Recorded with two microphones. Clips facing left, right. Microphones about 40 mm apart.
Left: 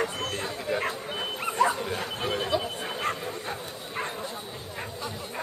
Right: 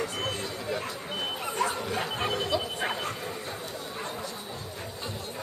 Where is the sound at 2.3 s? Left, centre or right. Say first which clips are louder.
Left 3 dB; centre.